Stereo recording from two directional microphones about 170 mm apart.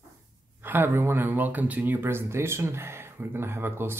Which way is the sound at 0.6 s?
10° right (ahead or behind).